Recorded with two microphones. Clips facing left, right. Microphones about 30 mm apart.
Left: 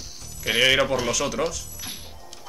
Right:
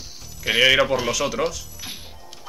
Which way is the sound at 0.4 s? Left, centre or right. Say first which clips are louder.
Right 3 dB; centre.